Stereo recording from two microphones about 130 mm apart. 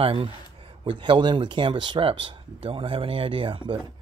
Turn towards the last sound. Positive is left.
turn(degrees=-40)  # may be behind; listen again after turning